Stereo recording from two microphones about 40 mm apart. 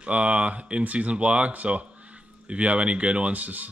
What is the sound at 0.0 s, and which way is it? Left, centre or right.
Speech, right.